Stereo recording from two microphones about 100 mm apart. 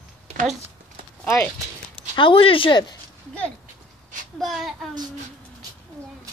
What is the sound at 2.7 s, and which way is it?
Speech, 45° left (ahead or behind).